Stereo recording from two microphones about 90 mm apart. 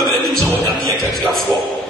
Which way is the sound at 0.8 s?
Centre (ahead or behind).